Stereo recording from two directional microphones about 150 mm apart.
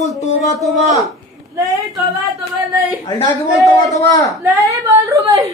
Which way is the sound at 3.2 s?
20° left (ahead or behind).